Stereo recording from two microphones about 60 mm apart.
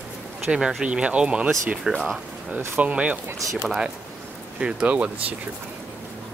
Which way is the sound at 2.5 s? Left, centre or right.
Right.